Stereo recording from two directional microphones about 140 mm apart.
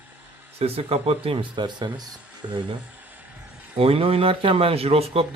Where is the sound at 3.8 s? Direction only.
40° right (ahead or behind).